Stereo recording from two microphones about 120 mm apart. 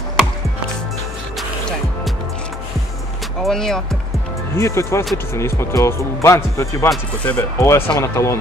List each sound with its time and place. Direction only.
3.4 s speech: 5° left (ahead or behind)
4.6 s speech: 25° left (ahead or behind)